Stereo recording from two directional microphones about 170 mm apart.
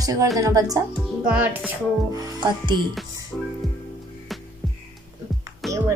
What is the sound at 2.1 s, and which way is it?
Speech, 25° right (ahead or behind).